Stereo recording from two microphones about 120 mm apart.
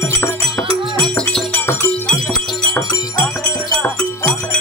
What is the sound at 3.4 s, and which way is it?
Music, 10° left (ahead or behind).